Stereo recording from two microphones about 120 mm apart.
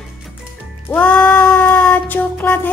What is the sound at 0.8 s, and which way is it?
Music, 15° left (ahead or behind).